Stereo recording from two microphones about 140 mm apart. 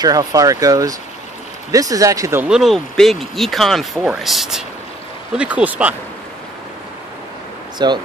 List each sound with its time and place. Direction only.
0.0 s speech: 25° right (ahead or behind)
2.4 s speech: 5° right (ahead or behind)
7.8 s speech: 30° right (ahead or behind)